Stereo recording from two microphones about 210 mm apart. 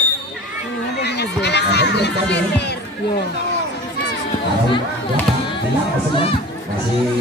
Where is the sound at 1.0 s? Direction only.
55° left (ahead or behind).